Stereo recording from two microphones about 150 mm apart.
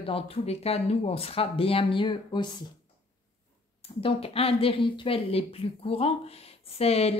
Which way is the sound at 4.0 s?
40° left (ahead or behind).